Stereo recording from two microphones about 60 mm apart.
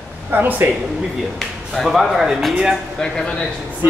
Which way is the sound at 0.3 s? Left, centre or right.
Right.